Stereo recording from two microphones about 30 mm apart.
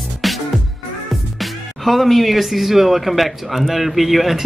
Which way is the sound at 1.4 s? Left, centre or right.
Centre.